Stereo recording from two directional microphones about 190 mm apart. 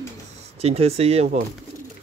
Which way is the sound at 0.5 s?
30° right (ahead or behind).